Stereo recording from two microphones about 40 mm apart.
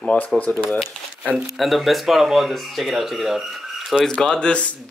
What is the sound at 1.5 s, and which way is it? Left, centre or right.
Speech, centre.